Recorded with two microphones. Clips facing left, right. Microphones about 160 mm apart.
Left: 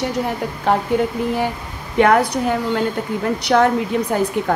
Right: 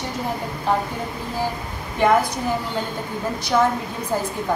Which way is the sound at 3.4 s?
70° left (ahead or behind).